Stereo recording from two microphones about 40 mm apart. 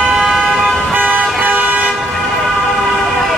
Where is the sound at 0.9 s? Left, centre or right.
Right.